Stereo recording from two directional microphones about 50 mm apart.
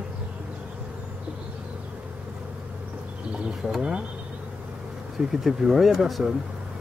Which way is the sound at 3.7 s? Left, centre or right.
Centre.